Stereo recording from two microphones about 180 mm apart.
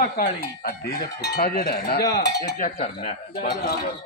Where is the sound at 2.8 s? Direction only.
35° left (ahead or behind).